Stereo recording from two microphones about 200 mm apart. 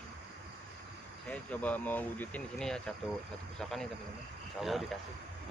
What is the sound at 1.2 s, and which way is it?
Speech, 10° left (ahead or behind).